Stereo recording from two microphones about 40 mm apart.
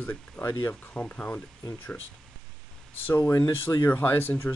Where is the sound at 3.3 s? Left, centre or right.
Left.